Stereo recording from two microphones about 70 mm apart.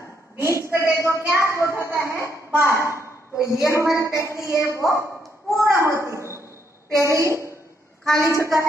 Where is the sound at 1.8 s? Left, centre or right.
Right.